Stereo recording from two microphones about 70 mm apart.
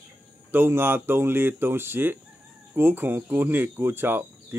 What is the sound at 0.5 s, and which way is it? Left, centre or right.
Speech, right.